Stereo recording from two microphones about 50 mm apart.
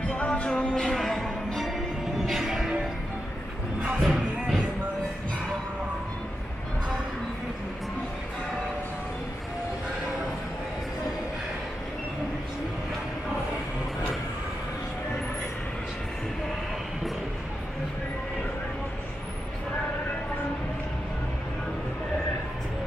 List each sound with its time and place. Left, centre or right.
0.1 s music: left
0.8 s music: centre
2.2 s music: centre
4.0 s music: centre